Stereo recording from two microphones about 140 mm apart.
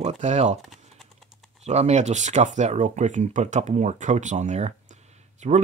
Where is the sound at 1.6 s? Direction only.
50° right (ahead or behind).